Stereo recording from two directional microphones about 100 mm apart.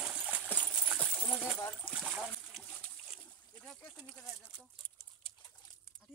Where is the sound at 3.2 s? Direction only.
10° left (ahead or behind).